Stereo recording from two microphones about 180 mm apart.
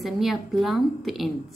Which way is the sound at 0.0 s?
Centre (ahead or behind).